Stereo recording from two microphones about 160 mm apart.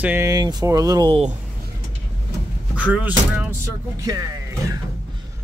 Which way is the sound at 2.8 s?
10° right (ahead or behind).